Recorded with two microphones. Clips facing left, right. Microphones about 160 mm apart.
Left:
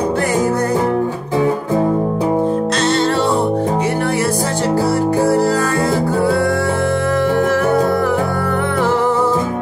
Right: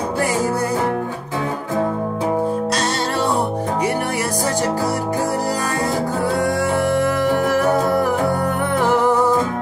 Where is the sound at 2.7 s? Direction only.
10° right (ahead or behind).